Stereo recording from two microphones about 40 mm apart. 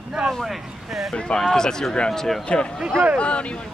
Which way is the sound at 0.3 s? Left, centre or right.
Centre.